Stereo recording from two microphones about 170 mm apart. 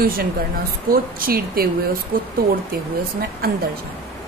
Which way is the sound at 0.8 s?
60° right (ahead or behind).